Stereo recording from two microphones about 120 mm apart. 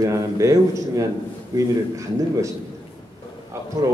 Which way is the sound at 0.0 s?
25° right (ahead or behind).